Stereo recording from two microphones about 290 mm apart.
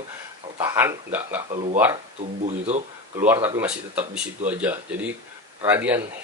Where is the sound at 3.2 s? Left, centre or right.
Centre.